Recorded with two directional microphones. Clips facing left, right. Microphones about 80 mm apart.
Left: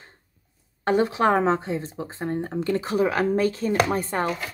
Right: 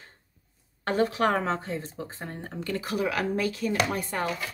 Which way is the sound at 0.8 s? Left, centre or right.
Left.